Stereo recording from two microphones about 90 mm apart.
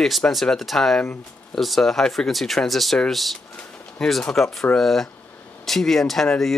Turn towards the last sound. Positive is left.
turn(degrees=5)  # may be behind; listen again after turning